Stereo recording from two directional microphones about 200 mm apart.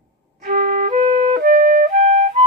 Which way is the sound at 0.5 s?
40° right (ahead or behind).